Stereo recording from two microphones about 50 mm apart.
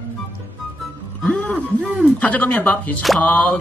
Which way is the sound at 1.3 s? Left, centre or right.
Left.